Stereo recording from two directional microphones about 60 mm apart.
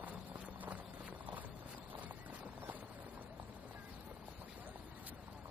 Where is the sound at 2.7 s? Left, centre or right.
Right.